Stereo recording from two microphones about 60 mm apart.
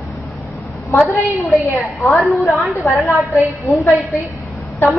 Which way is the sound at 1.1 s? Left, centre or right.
Left.